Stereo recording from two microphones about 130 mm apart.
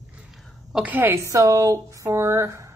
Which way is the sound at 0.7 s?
10° right (ahead or behind).